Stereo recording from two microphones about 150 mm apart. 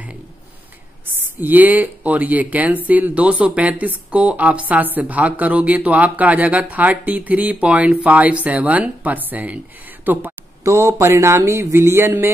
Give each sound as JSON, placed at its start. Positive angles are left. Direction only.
{"t": 1.0, "sound": "speech", "side_deg": -10}